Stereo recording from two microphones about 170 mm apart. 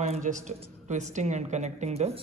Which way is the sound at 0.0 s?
45° right (ahead or behind).